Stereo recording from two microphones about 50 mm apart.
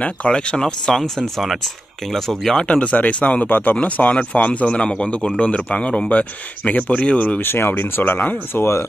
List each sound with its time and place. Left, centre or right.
0.3 s speech: centre
2.5 s speech: left
3.4 s speech: left
7.4 s speech: left
8.5 s speech: left